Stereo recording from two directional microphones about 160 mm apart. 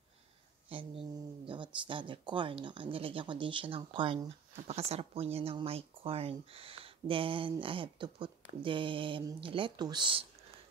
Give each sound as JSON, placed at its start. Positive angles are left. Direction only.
{"t": 0.7, "sound": "speech", "side_deg": -35}